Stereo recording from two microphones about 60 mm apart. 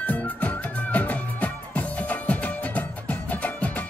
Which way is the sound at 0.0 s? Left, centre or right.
Left.